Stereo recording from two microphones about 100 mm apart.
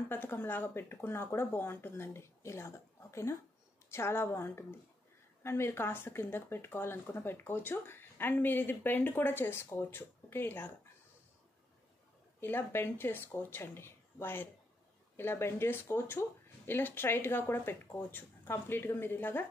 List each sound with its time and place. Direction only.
0.1 s speech: 20° left (ahead or behind)
12.4 s speech: 20° left (ahead or behind)